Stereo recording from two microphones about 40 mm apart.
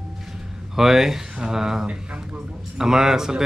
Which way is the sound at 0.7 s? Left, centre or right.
Centre.